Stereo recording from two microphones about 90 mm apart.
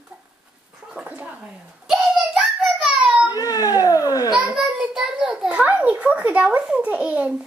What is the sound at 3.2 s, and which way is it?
Baby cry, 40° left (ahead or behind).